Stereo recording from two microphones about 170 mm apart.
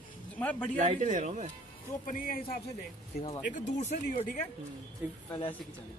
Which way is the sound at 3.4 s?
45° left (ahead or behind).